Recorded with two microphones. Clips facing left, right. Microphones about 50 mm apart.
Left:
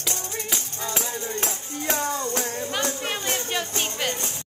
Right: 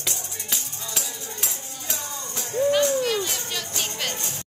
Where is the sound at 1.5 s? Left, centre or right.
Left.